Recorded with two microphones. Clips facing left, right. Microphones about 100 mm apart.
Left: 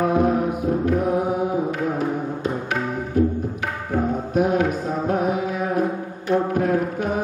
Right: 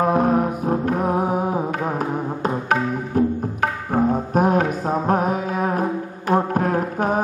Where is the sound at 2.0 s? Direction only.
45° right (ahead or behind).